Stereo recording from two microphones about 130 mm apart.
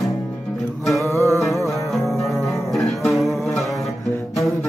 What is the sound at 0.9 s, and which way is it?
Music, 25° right (ahead or behind).